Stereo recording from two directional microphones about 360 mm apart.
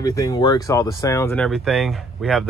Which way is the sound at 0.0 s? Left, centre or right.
Centre.